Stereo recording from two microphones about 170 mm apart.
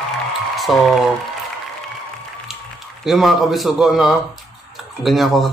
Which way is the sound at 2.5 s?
Centre (ahead or behind).